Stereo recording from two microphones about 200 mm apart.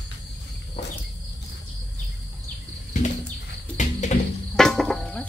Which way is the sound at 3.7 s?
35° left (ahead or behind).